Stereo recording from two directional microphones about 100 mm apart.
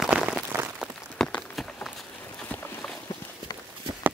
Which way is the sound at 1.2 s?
5° left (ahead or behind).